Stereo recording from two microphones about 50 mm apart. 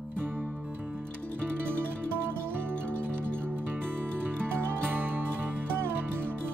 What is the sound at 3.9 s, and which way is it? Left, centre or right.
Music, right.